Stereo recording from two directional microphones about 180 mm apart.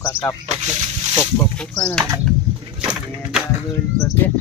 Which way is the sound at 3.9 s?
15° left (ahead or behind).